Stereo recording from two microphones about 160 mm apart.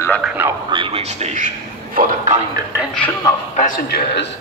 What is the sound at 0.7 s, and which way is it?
A man's voice, 35° right (ahead or behind).